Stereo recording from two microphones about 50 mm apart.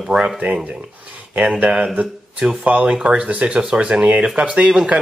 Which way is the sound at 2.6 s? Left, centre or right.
Right.